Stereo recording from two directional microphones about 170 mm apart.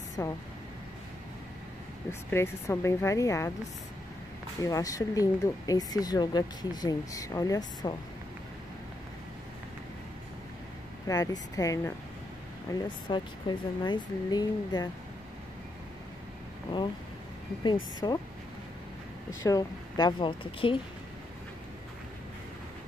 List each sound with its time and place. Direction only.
0.2 s a woman's voice: 15° left (ahead or behind)
2.0 s a woman's voice: 15° left (ahead or behind)
4.6 s speech: 20° left (ahead or behind)
11.1 s speech: 20° left (ahead or behind)
17.6 s speech: 25° left (ahead or behind)
19.4 s speech: 20° left (ahead or behind)